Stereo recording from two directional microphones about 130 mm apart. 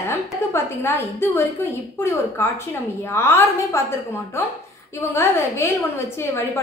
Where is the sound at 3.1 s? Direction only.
20° left (ahead or behind).